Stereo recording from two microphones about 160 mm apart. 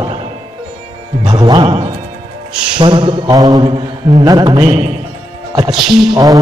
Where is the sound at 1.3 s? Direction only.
25° right (ahead or behind).